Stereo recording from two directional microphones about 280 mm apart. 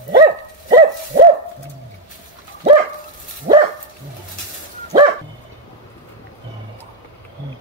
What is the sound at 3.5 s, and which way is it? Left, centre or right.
Dog, right.